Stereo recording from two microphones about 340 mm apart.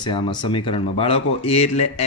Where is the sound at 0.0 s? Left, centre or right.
Centre.